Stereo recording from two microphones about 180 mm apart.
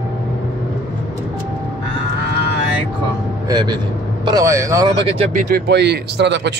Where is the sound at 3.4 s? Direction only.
25° right (ahead or behind).